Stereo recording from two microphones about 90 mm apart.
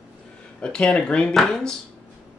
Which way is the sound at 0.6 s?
10° left (ahead or behind).